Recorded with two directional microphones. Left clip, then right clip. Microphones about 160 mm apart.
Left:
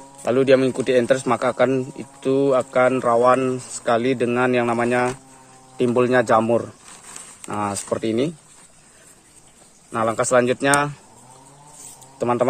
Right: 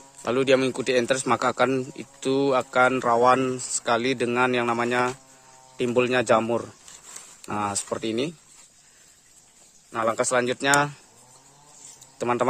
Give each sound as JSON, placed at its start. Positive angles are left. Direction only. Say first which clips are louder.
{"t": 0.2, "sound": "a man's voice", "louder": "left 5 dB", "side_deg": -25}
{"t": 9.8, "sound": "speech", "louder": "left 4 dB", "side_deg": 0}
{"t": 12.2, "sound": "a man's voice", "louder": "left 4 dB", "side_deg": -25}